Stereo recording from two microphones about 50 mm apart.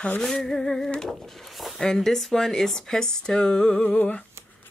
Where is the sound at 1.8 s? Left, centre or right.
Centre.